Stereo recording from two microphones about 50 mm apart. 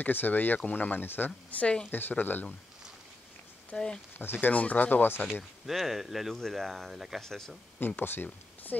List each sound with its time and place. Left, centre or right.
0.0 s speech: left
1.9 s speech: left
3.7 s speech: centre
4.2 s speech: left
4.5 s speech: left
5.3 s speech: centre
6.9 s speech: centre
7.2 s speech: centre
7.8 s speech: left